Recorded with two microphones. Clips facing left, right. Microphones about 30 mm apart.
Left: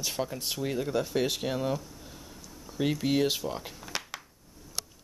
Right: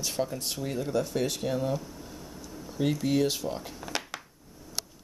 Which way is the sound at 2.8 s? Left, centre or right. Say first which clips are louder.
Right 1 dB; centre.